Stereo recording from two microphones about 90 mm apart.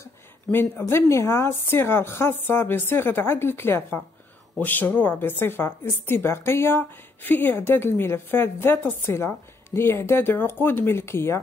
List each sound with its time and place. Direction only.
0.0 s a woman's voice: 25° left (ahead or behind)